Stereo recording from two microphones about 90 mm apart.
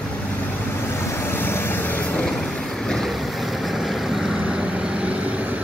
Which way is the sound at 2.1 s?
5° left (ahead or behind).